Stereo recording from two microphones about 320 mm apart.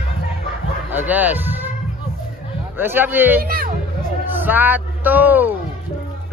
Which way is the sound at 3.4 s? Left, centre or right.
Right.